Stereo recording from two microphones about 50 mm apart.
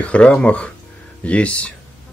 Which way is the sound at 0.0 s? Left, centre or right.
Left.